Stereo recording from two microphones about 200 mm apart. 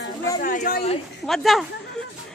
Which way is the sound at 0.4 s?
40° left (ahead or behind).